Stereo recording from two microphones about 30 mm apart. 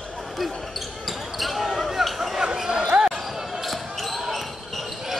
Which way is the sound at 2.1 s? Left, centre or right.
Centre.